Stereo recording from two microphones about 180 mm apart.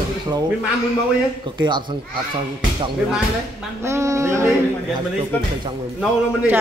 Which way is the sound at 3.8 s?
15° right (ahead or behind).